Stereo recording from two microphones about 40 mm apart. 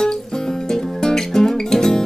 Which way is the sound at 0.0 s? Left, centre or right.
Centre.